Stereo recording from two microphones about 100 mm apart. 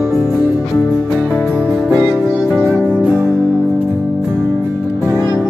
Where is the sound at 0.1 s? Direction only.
30° left (ahead or behind).